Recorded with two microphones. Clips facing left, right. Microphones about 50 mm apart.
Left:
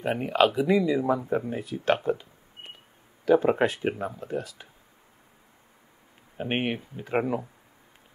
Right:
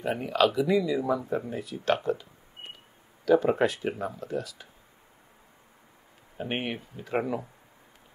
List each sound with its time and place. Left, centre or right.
0.0 s speech: left
3.3 s speech: left
3.9 s speech: centre
4.2 s speech: left
6.3 s speech: left